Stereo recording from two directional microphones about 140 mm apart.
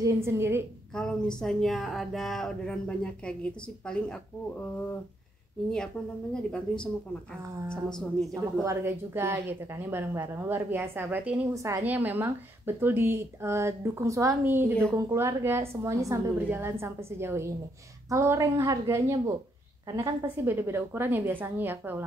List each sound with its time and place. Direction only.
0.0 s a woman's voice: 20° right (ahead or behind)
0.9 s speech: 5° left (ahead or behind)
6.5 s speech: 5° left (ahead or behind)
8.0 s speech: centre (ahead or behind)
8.6 s a woman's voice: 15° right (ahead or behind)